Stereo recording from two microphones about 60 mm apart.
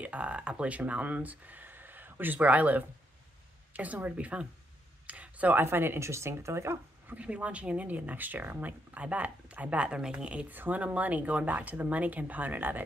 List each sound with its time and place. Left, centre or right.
0.0 s speech: right
5.0 s a sound: right
5.6 s speech: right
7.1 s speech: right
10.5 s speech: right